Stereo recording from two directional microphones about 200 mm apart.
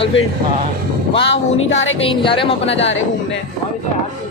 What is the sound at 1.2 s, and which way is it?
Music, 65° left (ahead or behind).